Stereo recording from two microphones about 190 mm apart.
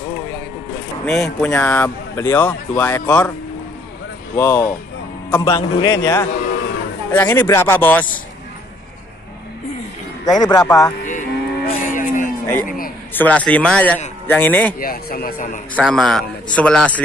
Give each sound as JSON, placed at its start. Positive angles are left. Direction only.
{"t": 1.0, "sound": "a man's voice", "side_deg": 5}
{"t": 4.4, "sound": "speech", "side_deg": 15}
{"t": 10.2, "sound": "speech", "side_deg": 20}
{"t": 11.1, "sound": "cattle", "side_deg": 45}
{"t": 12.6, "sound": "a man's voice", "side_deg": 50}
{"t": 13.1, "sound": "speech", "side_deg": 10}
{"t": 14.8, "sound": "speech", "side_deg": 50}
{"t": 15.7, "sound": "a man's voice", "side_deg": 0}